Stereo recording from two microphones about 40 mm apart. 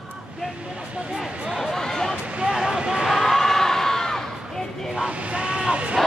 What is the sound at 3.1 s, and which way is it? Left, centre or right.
Crowd, centre.